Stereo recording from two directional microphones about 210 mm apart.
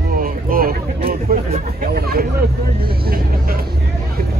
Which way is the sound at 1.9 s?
45° right (ahead or behind).